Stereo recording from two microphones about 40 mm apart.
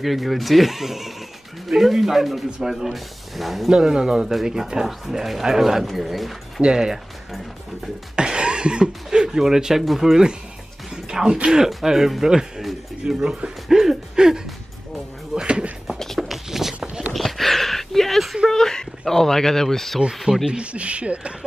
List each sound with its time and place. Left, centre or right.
0.0 s speech: centre
3.7 s speech: centre
6.6 s speech: right
8.2 s speech: right
11.1 s music: centre
11.5 s speech: centre
13.0 s speech: right
13.7 s a sound: centre
15.3 s a sound: right
16.2 s a sound: centre
17.1 s a sound: centre
18.5 s speech: centre
20.4 s speech: right